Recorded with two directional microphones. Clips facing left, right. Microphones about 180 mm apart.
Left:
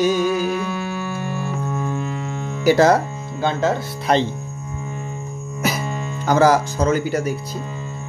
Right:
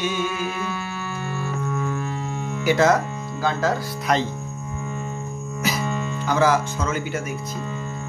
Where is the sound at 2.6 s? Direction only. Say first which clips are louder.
Left 4 dB; 35° left (ahead or behind).